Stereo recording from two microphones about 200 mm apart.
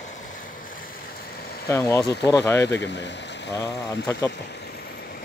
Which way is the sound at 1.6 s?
15° left (ahead or behind).